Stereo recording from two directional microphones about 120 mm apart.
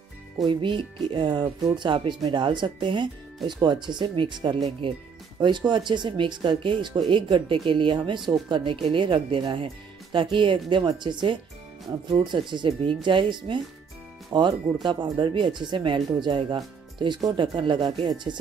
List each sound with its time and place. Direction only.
0.5 s speech: 45° right (ahead or behind)